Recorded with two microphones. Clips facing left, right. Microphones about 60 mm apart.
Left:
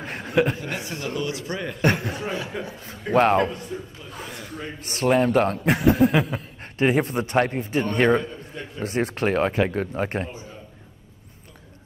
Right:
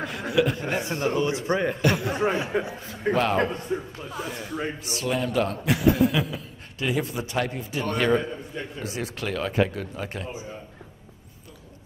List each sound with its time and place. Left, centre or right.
0.3 s a man's voice: left
0.7 s a man's voice: right
1.8 s a man's voice: left
2.0 s a man's voice: right
4.7 s a man's voice: left